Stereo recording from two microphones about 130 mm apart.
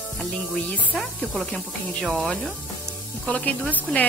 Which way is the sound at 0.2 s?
10° left (ahead or behind).